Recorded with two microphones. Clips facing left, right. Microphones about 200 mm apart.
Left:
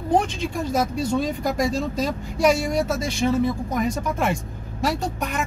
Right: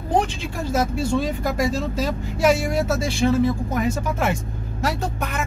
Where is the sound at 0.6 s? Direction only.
5° right (ahead or behind).